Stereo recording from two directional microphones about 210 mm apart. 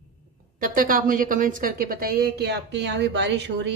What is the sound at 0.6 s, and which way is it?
A woman's voice, 40° right (ahead or behind).